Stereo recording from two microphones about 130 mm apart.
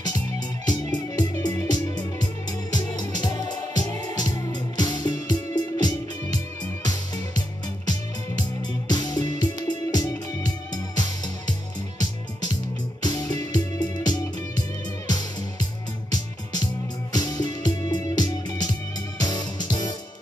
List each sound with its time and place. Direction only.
0.7 s music: 30° left (ahead or behind)
2.7 s music: 30° left (ahead or behind)
13.0 s music: 30° left (ahead or behind)
17.1 s music: 30° left (ahead or behind)